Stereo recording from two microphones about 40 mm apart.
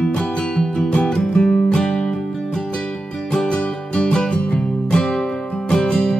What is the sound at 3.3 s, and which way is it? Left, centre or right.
Music, left.